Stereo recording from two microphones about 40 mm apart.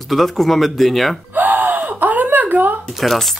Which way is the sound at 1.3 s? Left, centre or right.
Right.